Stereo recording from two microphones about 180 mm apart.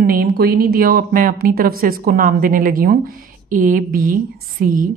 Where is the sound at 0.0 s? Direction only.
55° right (ahead or behind).